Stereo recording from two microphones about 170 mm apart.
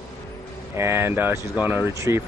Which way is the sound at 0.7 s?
15° right (ahead or behind).